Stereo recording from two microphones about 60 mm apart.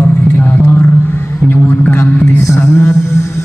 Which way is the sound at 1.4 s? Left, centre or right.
Left.